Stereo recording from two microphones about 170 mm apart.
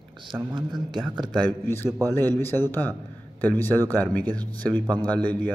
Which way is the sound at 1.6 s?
15° left (ahead or behind).